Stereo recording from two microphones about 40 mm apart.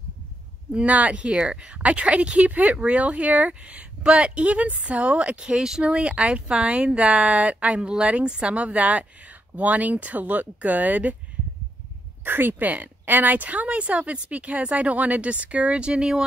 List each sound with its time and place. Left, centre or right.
0.7 s speech: right
5.6 s speech: centre
5.9 s speech: right
12.3 s speech: right
12.6 s speech: right